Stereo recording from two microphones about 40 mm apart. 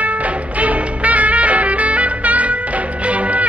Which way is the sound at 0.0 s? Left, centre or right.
Right.